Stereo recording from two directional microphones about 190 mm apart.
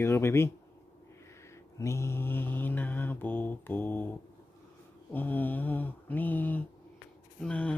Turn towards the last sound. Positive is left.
turn(degrees=5)  # may be behind; listen again after turning